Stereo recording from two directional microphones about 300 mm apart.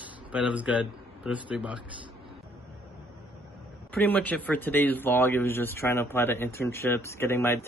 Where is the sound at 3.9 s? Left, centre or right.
Centre.